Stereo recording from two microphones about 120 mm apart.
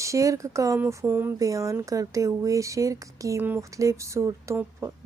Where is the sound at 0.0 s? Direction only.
25° right (ahead or behind).